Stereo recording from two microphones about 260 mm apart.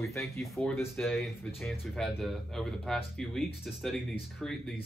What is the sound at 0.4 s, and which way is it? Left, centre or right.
Speech, centre.